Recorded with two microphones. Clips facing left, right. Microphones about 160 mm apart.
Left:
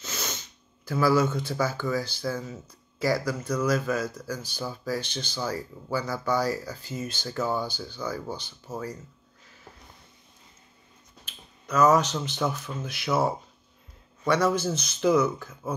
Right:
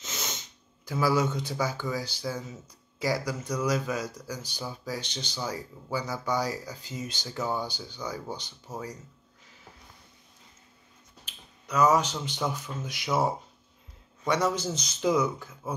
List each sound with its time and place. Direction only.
0.0 s a sound: 20° right (ahead or behind)
0.8 s speech: 15° right (ahead or behind)
11.2 s speech: 15° right (ahead or behind)